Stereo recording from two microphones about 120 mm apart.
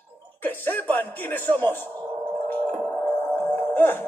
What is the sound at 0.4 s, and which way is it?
Speech, 15° left (ahead or behind).